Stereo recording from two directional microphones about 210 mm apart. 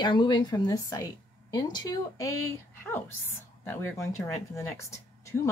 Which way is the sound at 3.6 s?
10° left (ahead or behind).